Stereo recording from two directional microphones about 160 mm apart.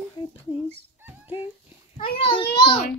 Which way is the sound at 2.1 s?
35° left (ahead or behind).